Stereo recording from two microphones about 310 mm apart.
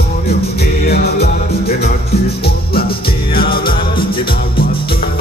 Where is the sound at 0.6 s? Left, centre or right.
Left.